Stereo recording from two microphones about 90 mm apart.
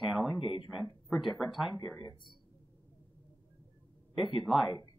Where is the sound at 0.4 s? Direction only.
65° left (ahead or behind).